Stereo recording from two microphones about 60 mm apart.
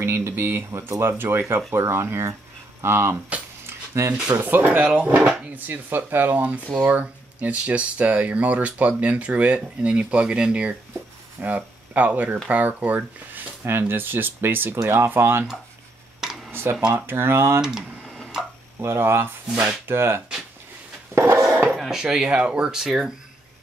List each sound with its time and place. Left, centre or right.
0.0 s speech: right
3.6 s a sound: right
4.4 s speech: right
4.7 s speech: centre
5.7 s speech: right
16.9 s speech: right
17.6 s speech: centre
18.0 s tick-tock: centre
18.8 s speech: right
21.1 s a sound: right
21.7 s a sound: centre
22.0 s speech: centre